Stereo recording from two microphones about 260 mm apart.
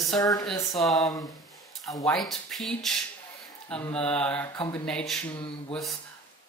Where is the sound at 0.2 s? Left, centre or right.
Centre.